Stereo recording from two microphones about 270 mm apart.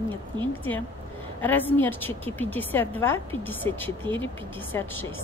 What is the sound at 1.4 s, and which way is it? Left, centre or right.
A woman's voice, centre.